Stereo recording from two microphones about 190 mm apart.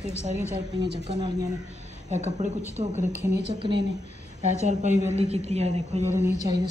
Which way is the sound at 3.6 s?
25° right (ahead or behind).